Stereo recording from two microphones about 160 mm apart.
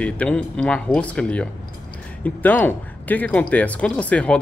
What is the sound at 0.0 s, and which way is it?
Speech, 10° left (ahead or behind).